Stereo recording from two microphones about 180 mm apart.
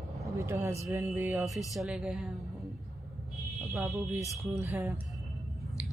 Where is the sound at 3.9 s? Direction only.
15° right (ahead or behind).